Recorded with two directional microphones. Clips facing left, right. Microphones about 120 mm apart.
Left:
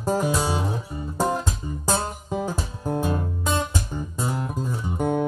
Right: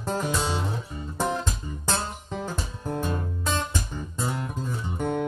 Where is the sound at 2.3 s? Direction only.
10° left (ahead or behind).